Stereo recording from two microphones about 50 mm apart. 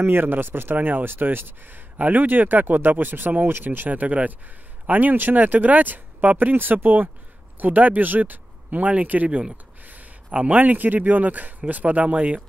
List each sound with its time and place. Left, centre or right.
0.0 s a man's voice: right